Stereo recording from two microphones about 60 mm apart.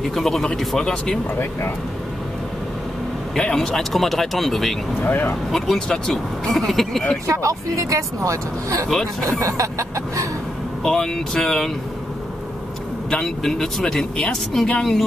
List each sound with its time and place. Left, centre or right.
0.0 s speech: centre
3.3 s speech: centre
5.0 s speech: left
5.5 s speech: centre
7.2 s speech: right
8.8 s speech: centre
9.4 s speech: right
10.8 s speech: centre
13.1 s speech: centre